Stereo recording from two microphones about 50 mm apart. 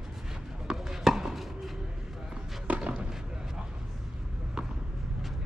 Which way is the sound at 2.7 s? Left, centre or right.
Right.